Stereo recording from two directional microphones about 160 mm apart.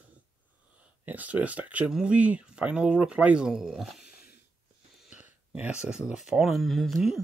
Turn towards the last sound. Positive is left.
turn(degrees=0)  # may be behind; listen again after turning